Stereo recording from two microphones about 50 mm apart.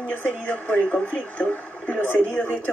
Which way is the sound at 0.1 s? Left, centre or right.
Left.